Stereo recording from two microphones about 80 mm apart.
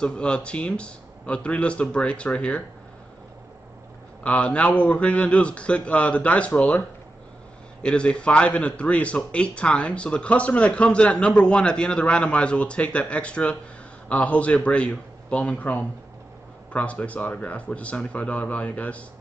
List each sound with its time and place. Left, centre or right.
0.0 s a man's voice: centre
4.2 s a man's voice: centre
7.8 s a man's voice: centre